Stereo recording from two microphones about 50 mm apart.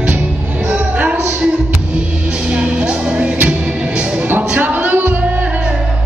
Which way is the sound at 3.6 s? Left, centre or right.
Centre.